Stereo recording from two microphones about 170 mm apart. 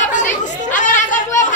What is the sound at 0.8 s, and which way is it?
Chatter, 50° left (ahead or behind).